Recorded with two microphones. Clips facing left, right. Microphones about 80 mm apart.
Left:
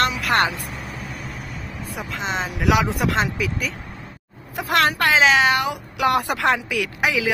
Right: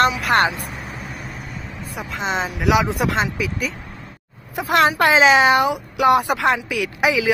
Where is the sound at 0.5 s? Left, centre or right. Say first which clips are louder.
Right 2 dB; centre.